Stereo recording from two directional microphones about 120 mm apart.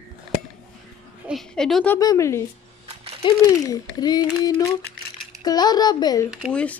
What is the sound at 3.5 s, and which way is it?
A child's voice, 30° left (ahead or behind).